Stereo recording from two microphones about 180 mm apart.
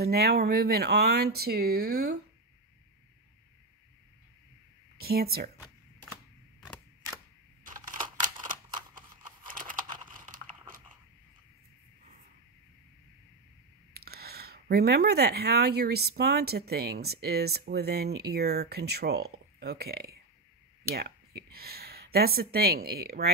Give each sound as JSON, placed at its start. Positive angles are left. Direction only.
{"t": 0.0, "sound": "speech", "side_deg": -60}
{"t": 4.9, "sound": "speech", "side_deg": -60}
{"t": 7.6, "sound": "camera", "side_deg": -50}
{"t": 8.2, "sound": "a sound", "side_deg": -45}
{"t": 9.5, "sound": "crumpling", "side_deg": -50}
{"t": 13.9, "sound": "speech", "side_deg": -60}